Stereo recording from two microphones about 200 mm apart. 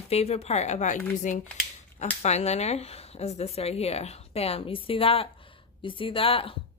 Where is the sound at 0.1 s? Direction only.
30° left (ahead or behind).